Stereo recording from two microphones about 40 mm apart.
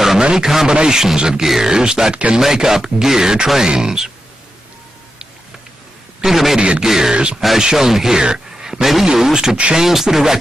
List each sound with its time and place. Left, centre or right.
0.2 s a man's voice: centre
6.2 s a man's voice: centre
8.2 s a sound: centre
8.8 s a man's voice: centre